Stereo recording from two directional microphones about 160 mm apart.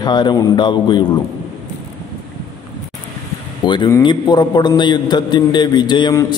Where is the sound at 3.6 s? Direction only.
30° left (ahead or behind).